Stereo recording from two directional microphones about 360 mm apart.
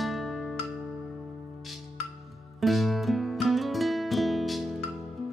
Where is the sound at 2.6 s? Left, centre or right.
Centre.